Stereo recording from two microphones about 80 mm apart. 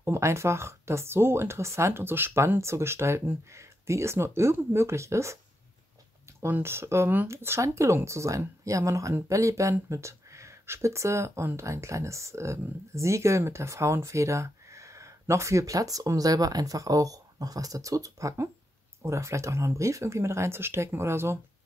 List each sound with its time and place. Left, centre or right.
0.0 s speech: right
6.4 s speech: right